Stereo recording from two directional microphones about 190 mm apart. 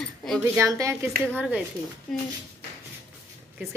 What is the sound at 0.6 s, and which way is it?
Speech, 15° right (ahead or behind).